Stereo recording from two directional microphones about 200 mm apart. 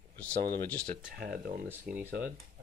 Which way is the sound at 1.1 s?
45° right (ahead or behind).